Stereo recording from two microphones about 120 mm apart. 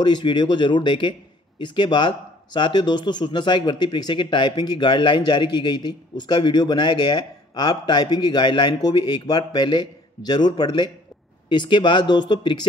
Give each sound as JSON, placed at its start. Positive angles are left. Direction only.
{"t": 0.0, "sound": "speech", "side_deg": 40}